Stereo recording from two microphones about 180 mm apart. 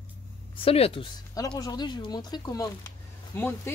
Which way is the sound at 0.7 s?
30° left (ahead or behind).